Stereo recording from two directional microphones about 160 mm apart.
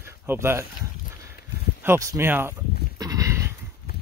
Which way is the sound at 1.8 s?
15° right (ahead or behind).